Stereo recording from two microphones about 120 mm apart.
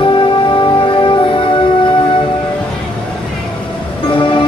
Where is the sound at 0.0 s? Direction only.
45° left (ahead or behind).